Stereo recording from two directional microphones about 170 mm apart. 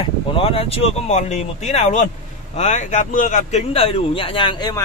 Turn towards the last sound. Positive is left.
turn(degrees=25)  # may be behind; listen again after turning